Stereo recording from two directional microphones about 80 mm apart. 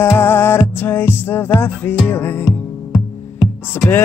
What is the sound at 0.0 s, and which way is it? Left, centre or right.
Music, left.